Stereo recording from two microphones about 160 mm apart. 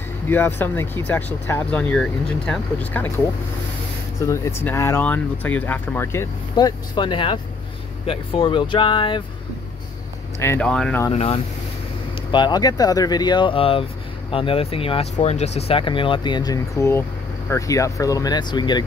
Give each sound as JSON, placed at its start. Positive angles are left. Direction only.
{"t": 0.3, "sound": "speech", "side_deg": 10}
{"t": 4.3, "sound": "speech", "side_deg": 15}
{"t": 10.4, "sound": "speech", "side_deg": 15}
{"t": 11.1, "sound": "speech", "side_deg": 40}
{"t": 12.3, "sound": "speech", "side_deg": 30}